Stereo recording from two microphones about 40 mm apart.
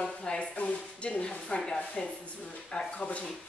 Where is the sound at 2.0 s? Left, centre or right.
Left.